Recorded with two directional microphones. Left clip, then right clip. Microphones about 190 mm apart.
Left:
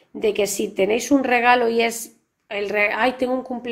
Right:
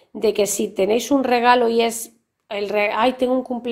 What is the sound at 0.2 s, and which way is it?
A woman's voice, 30° right (ahead or behind).